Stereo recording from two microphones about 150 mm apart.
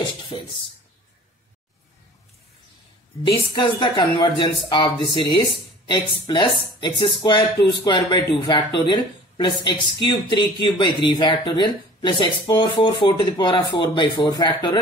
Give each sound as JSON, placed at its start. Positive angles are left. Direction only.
{"t": 0.3, "sound": "speech", "side_deg": 35}
{"t": 3.3, "sound": "speech", "side_deg": 30}